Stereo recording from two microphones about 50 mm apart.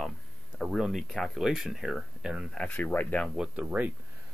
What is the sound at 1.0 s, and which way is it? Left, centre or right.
Speech, centre.